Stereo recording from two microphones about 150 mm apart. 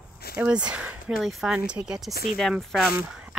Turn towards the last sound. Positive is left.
turn(degrees=-10)  # may be behind; listen again after turning